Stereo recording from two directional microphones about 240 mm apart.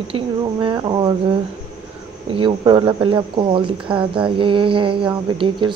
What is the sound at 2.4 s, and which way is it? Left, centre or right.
Speech, centre.